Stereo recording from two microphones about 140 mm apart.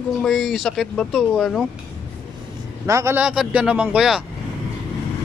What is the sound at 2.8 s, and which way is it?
Speech, 20° right (ahead or behind).